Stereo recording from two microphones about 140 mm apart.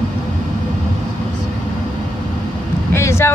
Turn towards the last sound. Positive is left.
turn(degrees=20)  # may be behind; listen again after turning